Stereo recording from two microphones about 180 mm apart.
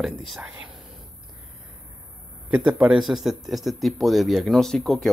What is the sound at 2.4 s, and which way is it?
Speech, 5° right (ahead or behind).